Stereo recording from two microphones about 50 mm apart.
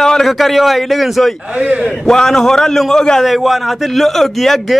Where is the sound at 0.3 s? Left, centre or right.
Centre.